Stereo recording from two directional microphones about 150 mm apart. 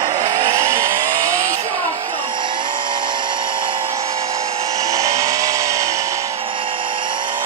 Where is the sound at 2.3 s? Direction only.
30° right (ahead or behind).